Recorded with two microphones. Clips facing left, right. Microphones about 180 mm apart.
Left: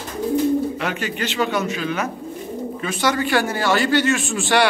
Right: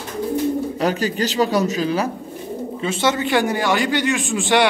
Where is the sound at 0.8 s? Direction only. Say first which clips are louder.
Right 5 dB; 35° right (ahead or behind); by 4.7 s 20° right (ahead or behind).